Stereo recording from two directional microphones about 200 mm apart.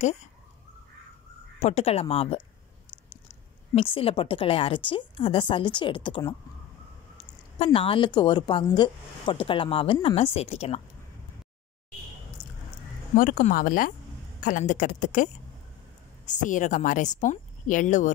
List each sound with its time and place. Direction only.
1.6 s speech: 30° left (ahead or behind)
7.5 s speech: 30° left (ahead or behind)
13.2 s speech: 40° left (ahead or behind)
16.3 s speech: 40° left (ahead or behind)